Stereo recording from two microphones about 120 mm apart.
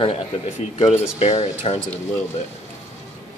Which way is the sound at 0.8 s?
70° left (ahead or behind).